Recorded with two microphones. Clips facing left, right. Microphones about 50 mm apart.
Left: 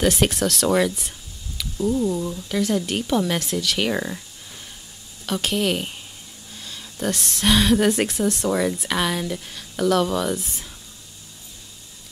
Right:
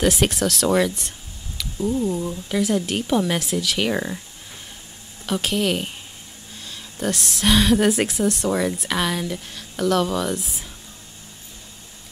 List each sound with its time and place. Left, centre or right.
0.0 s a woman's voice: centre
5.2 s a woman's voice: centre